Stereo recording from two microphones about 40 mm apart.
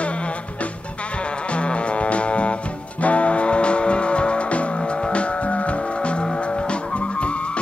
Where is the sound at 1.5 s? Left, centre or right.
Left.